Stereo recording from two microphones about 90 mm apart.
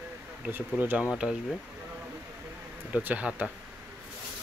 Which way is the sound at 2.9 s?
15° right (ahead or behind).